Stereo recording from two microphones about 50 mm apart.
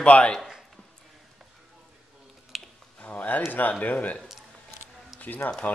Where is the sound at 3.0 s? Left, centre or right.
Left.